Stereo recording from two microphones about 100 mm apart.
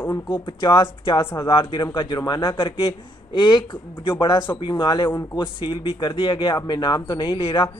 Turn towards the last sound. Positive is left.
turn(degrees=60)  # may be behind; listen again after turning